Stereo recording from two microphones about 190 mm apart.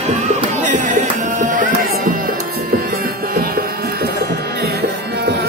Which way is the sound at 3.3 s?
50° right (ahead or behind).